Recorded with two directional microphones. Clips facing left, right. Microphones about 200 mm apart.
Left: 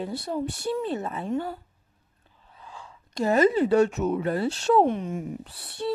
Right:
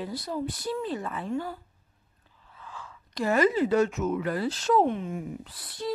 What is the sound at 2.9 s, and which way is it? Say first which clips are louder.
Speech: left 3 dB; 25° left (ahead or behind).